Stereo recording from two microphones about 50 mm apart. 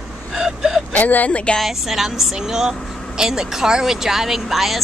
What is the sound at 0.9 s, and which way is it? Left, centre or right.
Speech, left.